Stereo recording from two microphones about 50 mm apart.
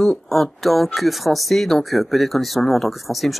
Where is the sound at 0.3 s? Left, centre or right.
Centre.